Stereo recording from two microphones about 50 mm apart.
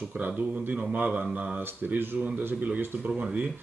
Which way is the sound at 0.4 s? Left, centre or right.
Right.